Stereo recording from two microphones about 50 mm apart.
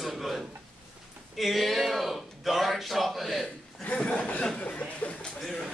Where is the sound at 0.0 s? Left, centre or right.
Centre.